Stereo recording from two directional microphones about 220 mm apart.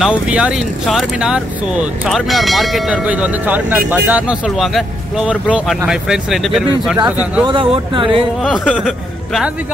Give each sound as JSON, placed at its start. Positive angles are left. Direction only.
{"t": 0.0, "sound": "speech", "side_deg": -5}
{"t": 7.4, "sound": "speech", "side_deg": -25}
{"t": 8.4, "sound": "speech", "side_deg": 0}